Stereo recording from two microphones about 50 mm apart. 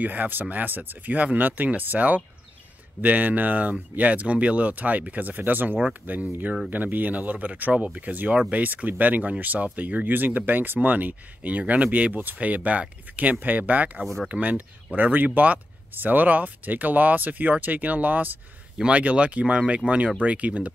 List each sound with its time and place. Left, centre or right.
0.0 s speech: right
14.0 s speech: centre
14.3 s speech: right